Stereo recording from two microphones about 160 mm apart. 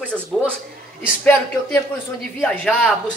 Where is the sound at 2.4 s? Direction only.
5° left (ahead or behind).